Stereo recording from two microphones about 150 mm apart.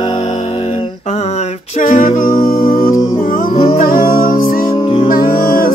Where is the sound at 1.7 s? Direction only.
60° left (ahead or behind).